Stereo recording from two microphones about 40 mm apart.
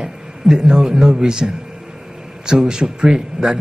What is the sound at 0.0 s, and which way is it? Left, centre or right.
A man's voice, centre.